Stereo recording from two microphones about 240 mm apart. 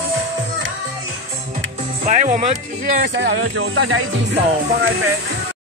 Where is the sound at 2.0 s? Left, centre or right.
Right.